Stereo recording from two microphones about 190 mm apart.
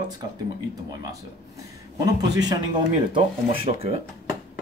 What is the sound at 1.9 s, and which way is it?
Speech, 20° right (ahead or behind).